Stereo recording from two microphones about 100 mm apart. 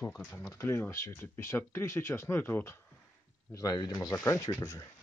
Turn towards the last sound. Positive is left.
turn(degrees=30)  # may be behind; listen again after turning